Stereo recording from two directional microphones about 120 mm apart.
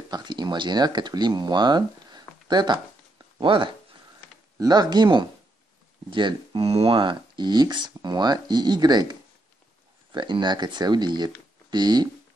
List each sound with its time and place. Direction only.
0.1 s speech: 40° right (ahead or behind)
10.1 s speech: 40° right (ahead or behind)